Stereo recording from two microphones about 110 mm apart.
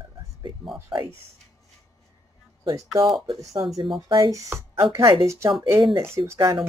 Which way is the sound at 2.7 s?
30° right (ahead or behind).